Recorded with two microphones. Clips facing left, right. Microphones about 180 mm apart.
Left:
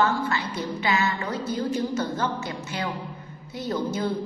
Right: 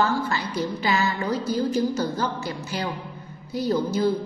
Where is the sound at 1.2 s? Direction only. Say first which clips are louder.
Right 3 dB; 35° right (ahead or behind).